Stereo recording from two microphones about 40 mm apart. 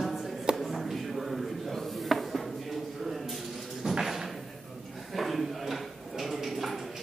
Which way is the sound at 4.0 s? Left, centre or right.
Centre.